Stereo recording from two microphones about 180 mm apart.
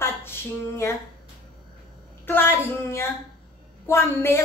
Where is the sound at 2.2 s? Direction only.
15° left (ahead or behind).